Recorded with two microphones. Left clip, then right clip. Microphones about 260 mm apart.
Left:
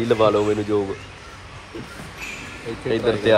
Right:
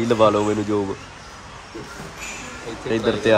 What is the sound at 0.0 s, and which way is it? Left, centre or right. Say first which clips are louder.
Speech: right 1 dB; centre.